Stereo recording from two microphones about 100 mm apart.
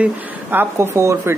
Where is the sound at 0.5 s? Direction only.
20° right (ahead or behind).